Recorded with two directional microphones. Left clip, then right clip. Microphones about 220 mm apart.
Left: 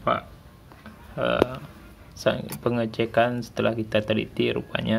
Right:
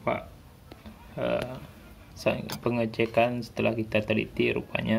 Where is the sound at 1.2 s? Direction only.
55° left (ahead or behind).